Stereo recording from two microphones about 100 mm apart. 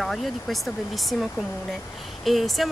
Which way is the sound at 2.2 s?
Centre (ahead or behind).